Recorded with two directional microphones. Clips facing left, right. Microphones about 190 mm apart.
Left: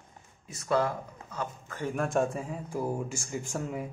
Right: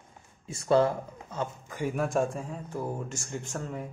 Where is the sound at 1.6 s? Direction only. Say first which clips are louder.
Right 1 dB; 10° right (ahead or behind).